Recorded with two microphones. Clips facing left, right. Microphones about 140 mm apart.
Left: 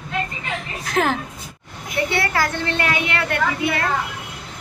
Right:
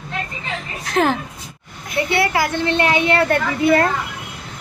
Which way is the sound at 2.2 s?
10° right (ahead or behind).